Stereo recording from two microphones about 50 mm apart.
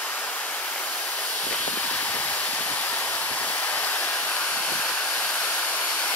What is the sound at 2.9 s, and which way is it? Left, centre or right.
Waterfall, left.